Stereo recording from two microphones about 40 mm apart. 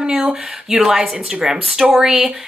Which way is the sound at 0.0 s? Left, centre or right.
Centre.